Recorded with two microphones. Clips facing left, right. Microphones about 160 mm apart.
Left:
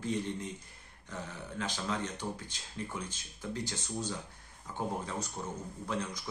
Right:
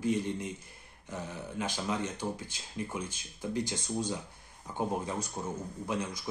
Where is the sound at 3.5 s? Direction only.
15° right (ahead or behind).